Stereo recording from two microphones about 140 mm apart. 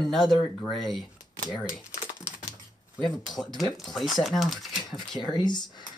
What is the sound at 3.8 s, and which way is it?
Speech, centre (ahead or behind).